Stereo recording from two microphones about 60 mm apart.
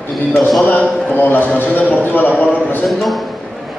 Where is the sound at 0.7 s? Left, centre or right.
Left.